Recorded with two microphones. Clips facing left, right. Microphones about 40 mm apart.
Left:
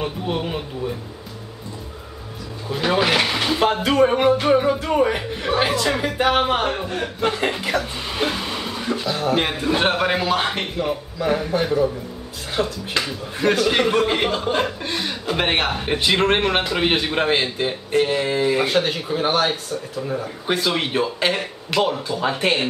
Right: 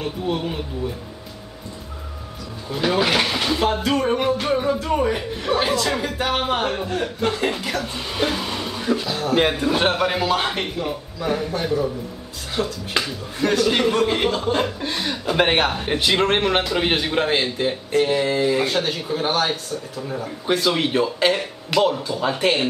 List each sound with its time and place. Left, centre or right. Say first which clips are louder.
0.0 s speech: even; centre
2.7 s speech: left 1 dB; centre